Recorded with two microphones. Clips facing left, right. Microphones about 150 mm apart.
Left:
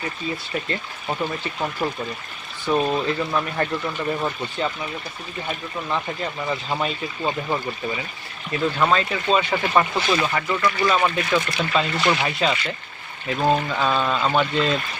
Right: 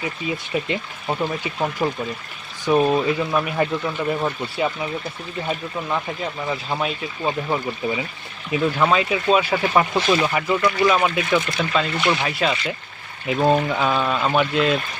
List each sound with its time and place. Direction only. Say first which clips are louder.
0.7 s speech: right 3 dB; 15° right (ahead or behind)
5.9 s speech: even; 5° right (ahead or behind)
13.3 s speech: right 3 dB; 15° right (ahead or behind)